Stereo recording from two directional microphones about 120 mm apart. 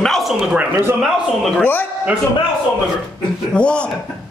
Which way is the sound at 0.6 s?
20° right (ahead or behind).